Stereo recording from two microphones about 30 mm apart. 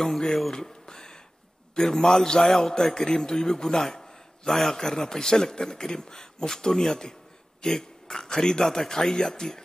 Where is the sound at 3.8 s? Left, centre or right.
Centre.